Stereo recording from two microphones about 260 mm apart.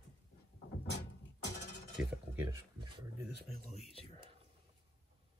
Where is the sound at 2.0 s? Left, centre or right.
Centre.